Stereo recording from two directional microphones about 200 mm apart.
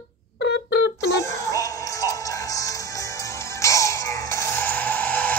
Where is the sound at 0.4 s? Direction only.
55° left (ahead or behind).